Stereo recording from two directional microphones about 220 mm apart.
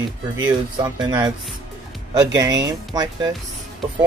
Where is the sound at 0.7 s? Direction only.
20° right (ahead or behind).